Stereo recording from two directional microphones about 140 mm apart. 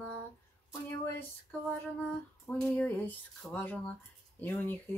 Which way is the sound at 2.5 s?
10° left (ahead or behind).